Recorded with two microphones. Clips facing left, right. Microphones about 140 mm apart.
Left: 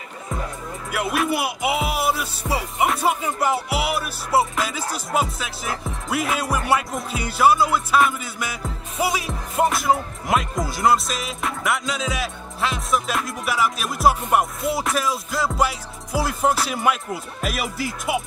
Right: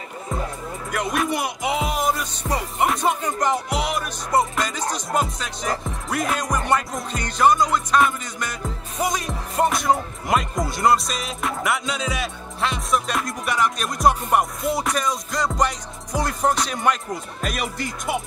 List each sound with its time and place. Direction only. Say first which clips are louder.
0.9 s music: left 1 dB; 5° left (ahead or behind)